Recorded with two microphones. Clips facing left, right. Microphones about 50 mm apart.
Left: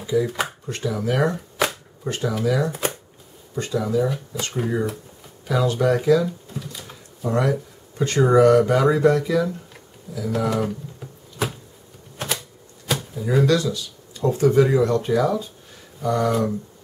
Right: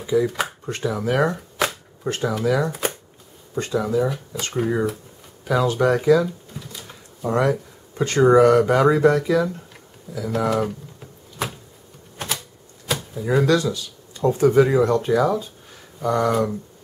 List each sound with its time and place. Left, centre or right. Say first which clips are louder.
0.0 s speech: right 1 dB; centre
0.7 s speech: right 2 dB; centre
3.8 s speech: even; centre
7.2 s speech: right 2 dB; centre
7.5 s a sound: right 1 dB; centre
8.4 s speech: left 3 dB; centre
11.4 s a sound: left 2 dB; centre
12.2 s typewriter: left 1 dB; centre
14.5 s speech: even; centre